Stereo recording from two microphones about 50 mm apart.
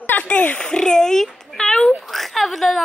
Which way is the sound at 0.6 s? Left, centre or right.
Centre.